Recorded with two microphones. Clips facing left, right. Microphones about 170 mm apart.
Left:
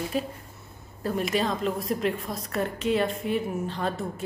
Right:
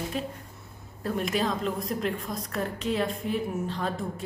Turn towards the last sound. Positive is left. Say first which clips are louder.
# left 1 dB
turn(degrees=0)  # may be behind; listen again after turning